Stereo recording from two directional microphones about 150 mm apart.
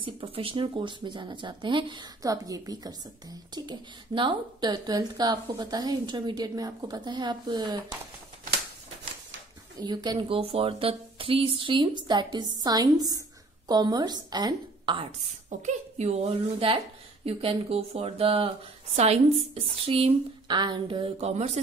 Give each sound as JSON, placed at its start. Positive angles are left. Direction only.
{"t": 0.0, "sound": "speech", "side_deg": -40}
{"t": 9.8, "sound": "a woman's voice", "side_deg": -30}
{"t": 15.6, "sound": "speech", "side_deg": -45}